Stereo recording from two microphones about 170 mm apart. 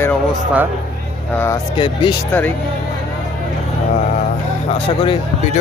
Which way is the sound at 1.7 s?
30° left (ahead or behind).